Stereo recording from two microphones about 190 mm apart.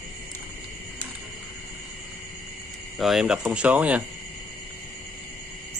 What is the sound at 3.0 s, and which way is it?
Speech, centre (ahead or behind).